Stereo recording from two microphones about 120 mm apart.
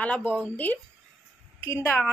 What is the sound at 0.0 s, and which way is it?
Music, 15° left (ahead or behind).